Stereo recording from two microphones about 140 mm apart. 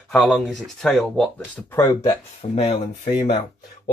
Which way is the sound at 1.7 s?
20° left (ahead or behind).